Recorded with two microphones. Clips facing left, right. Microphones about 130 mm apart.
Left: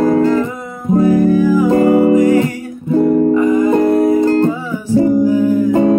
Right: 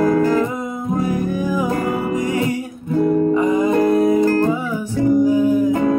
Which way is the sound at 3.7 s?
25° left (ahead or behind).